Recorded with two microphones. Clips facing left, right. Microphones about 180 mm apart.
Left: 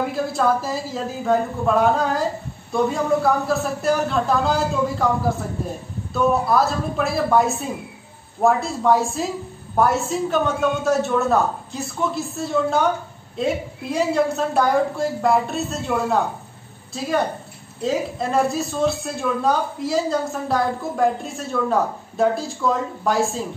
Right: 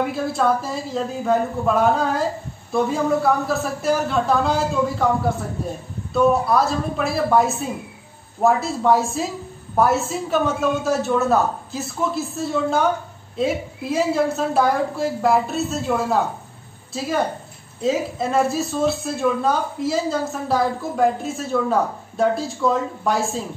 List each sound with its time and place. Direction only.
0.1 s a man's voice: centre (ahead or behind)